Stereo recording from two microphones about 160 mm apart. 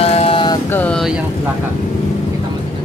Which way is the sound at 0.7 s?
10° left (ahead or behind).